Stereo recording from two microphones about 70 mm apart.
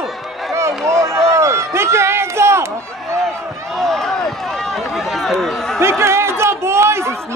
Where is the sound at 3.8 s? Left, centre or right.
Centre.